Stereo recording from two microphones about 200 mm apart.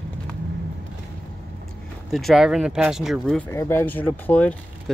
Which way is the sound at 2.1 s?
Centre (ahead or behind).